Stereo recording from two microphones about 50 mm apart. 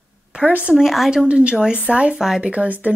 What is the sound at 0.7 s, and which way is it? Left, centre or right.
Speech, centre.